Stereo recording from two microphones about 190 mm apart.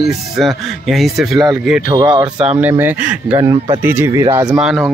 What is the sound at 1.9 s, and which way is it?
Speech, 20° right (ahead or behind).